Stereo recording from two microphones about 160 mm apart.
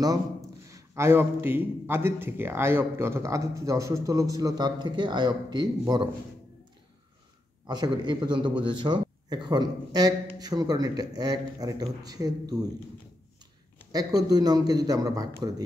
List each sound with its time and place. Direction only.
0.7 s a man's voice: 20° right (ahead or behind)
7.6 s a man's voice: 25° right (ahead or behind)
13.9 s a man's voice: 25° right (ahead or behind)